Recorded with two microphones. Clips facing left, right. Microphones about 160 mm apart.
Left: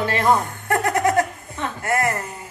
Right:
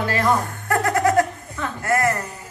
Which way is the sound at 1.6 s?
20° left (ahead or behind).